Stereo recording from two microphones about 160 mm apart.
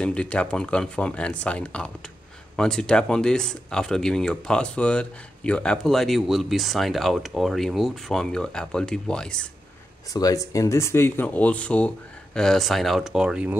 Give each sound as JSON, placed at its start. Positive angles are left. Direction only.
{"t": 0.0, "sound": "speech", "side_deg": 5}
{"t": 10.1, "sound": "speech", "side_deg": 20}